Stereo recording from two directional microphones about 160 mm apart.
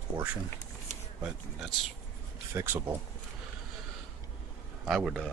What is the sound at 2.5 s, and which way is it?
Speech, 10° right (ahead or behind).